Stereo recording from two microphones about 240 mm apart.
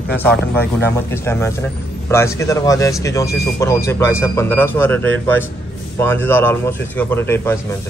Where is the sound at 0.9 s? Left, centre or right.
Centre.